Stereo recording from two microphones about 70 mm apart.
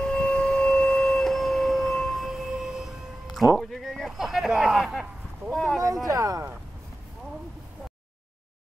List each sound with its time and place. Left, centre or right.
0.0 s a sound: centre
1.0 s a sound: centre
3.3 s bleat: centre
4.5 s speech: centre
5.5 s speech: centre
6.0 s speech: right